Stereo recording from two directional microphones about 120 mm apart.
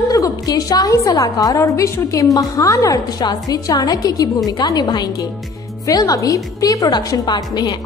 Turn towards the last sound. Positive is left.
turn(degrees=35)  # may be behind; listen again after turning